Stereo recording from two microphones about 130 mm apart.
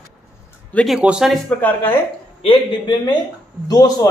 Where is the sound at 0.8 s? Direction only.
5° right (ahead or behind).